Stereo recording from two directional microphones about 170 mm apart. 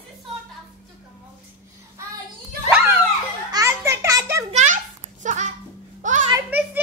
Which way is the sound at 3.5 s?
20° right (ahead or behind).